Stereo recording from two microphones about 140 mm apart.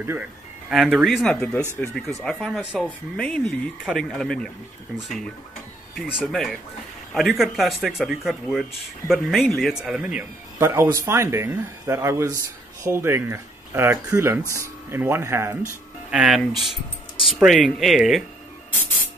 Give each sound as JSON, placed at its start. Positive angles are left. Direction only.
{"t": 0.7, "sound": "speech", "side_deg": -5}
{"t": 10.6, "sound": "speech", "side_deg": -20}
{"t": 16.1, "sound": "speech", "side_deg": -5}